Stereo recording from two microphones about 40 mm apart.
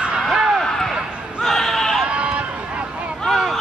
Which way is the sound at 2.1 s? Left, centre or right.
Right.